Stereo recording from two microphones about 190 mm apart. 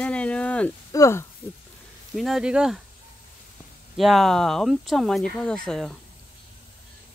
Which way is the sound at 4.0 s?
Centre (ahead or behind).